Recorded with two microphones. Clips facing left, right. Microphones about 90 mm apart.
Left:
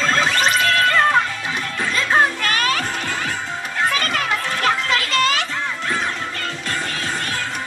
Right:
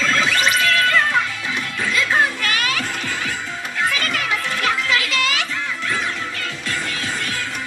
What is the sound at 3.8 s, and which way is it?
Music, 40° left (ahead or behind).